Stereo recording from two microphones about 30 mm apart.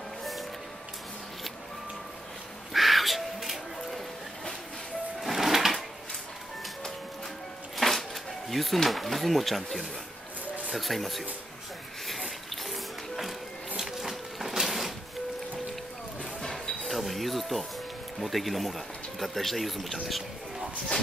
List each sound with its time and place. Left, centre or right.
2.7 s music: centre
5.2 s music: centre
7.7 s a sound: centre
8.8 s speech: centre
12.1 s a sound: centre
13.7 s printer: centre
16.3 s music: centre
16.8 s music: centre
18.2 s speech: centre